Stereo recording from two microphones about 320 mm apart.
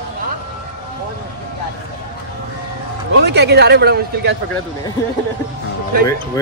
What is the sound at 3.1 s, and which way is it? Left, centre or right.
Speech, right.